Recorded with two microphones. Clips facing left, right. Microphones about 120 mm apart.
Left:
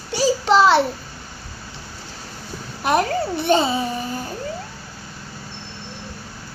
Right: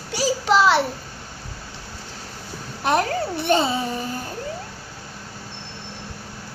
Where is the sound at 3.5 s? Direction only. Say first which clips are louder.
Left 2 dB; 15° left (ahead or behind).